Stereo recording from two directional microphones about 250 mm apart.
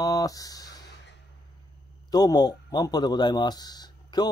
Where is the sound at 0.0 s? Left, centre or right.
Centre.